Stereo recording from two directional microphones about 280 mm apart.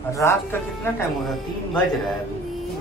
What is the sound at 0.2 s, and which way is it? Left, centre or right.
Speech, centre.